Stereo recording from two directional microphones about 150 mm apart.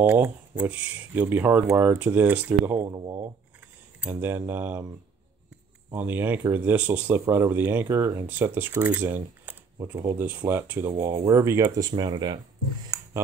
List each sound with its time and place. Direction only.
0.0 s speech: 10° right (ahead or behind)
2.9 s speech: 25° right (ahead or behind)
4.0 s speech: 15° right (ahead or behind)
5.9 s speech: 15° right (ahead or behind); by 12.4 s 30° right (ahead or behind)
12.9 s ping: 25° right (ahead or behind)